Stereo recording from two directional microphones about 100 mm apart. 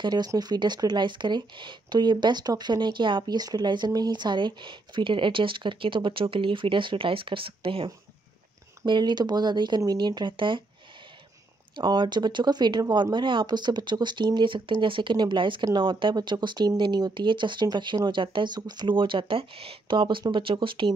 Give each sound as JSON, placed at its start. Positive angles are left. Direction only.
{"t": 0.0, "sound": "speech", "side_deg": -40}
{"t": 8.8, "sound": "speech", "side_deg": -50}
{"t": 11.7, "sound": "speech", "side_deg": -50}